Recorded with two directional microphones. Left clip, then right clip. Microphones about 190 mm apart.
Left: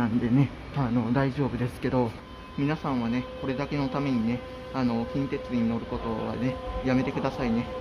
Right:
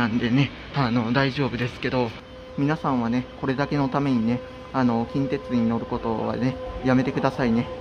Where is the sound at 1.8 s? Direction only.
15° left (ahead or behind).